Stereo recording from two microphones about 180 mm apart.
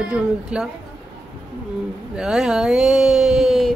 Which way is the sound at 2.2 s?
5° right (ahead or behind).